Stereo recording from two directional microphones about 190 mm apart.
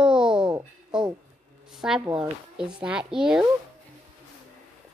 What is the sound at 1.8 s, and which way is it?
Speech, 5° right (ahead or behind).